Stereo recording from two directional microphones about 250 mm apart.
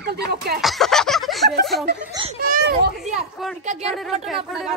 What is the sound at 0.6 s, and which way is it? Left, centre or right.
Speech, centre.